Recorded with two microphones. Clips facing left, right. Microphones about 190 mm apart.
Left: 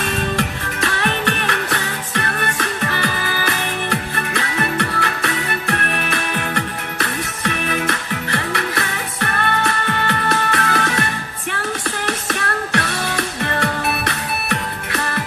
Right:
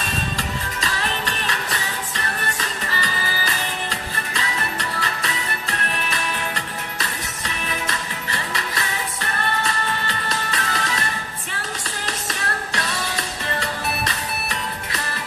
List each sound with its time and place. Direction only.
0.0 s music: 60° left (ahead or behind)
12.1 s music: 60° left (ahead or behind)